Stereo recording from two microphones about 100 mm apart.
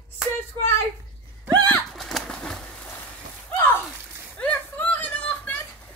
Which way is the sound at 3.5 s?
20° left (ahead or behind).